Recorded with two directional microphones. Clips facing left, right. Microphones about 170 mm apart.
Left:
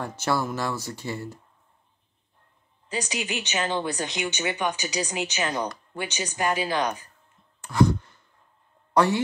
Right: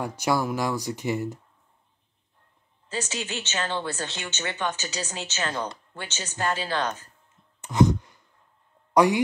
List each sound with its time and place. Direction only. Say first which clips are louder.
0.0 s speech: right 1 dB; 15° right (ahead or behind)
2.9 s a woman's voice: left 2 dB; 15° left (ahead or behind)
7.6 s sigh: even; 20° right (ahead or behind)
8.9 s speech: right 2 dB; 15° right (ahead or behind)